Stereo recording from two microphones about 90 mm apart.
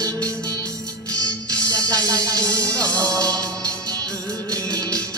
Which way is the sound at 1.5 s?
40° right (ahead or behind).